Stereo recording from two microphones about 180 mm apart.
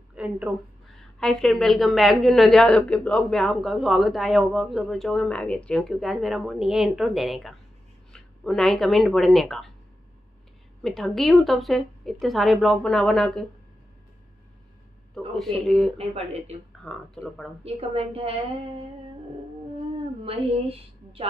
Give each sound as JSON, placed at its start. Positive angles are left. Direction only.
{"t": 0.1, "sound": "a sound", "side_deg": -5}
{"t": 0.9, "sound": "a woman's voice", "side_deg": 0}
{"t": 10.8, "sound": "a woman's voice", "side_deg": 0}
{"t": 15.1, "sound": "a woman's voice", "side_deg": 0}
{"t": 16.0, "sound": "a woman's voice", "side_deg": -35}
{"t": 16.8, "sound": "a woman's voice", "side_deg": 0}
{"t": 17.6, "sound": "a woman's voice", "side_deg": -35}
{"t": 20.2, "sound": "a woman's voice", "side_deg": -30}